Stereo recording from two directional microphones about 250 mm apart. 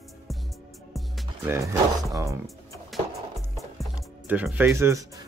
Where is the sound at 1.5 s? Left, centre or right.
Centre.